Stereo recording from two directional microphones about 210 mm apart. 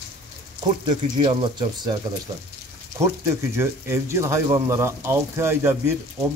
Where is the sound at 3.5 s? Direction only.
10° right (ahead or behind).